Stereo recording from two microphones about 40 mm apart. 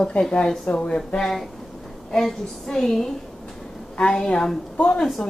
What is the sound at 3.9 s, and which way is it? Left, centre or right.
Speech, left.